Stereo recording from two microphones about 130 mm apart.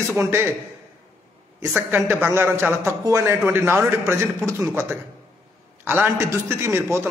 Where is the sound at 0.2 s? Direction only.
20° right (ahead or behind).